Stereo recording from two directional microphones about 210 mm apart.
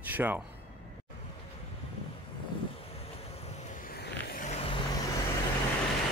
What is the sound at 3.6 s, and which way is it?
Vehicle, 40° left (ahead or behind).